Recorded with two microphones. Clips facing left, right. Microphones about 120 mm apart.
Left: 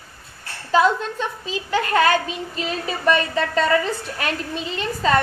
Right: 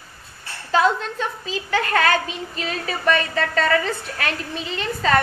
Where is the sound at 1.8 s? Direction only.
35° left (ahead or behind).